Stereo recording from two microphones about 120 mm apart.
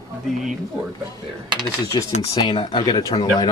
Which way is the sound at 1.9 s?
40° left (ahead or behind).